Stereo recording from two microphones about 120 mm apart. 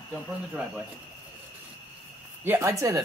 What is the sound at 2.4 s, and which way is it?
Speech, 20° right (ahead or behind).